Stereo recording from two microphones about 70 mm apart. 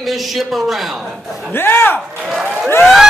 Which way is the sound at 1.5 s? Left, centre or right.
Left.